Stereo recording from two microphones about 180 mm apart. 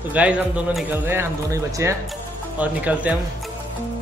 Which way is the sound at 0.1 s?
5° right (ahead or behind).